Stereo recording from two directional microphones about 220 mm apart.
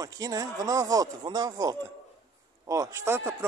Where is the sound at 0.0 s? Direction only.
15° right (ahead or behind).